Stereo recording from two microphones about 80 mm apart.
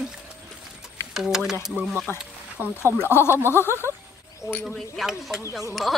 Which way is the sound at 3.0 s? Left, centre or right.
Left.